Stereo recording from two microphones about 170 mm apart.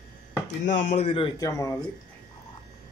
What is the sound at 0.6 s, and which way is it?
Speech, 45° left (ahead or behind).